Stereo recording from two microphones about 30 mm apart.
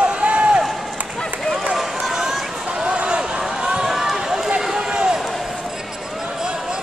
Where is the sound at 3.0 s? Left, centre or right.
Right.